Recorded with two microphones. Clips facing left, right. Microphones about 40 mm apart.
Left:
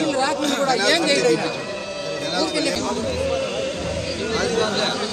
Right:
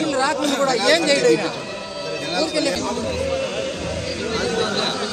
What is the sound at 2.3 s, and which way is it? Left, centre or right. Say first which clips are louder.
Speech: right 2 dB; centre.